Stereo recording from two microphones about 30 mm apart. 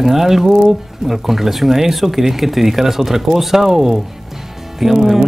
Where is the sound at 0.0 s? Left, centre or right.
Centre.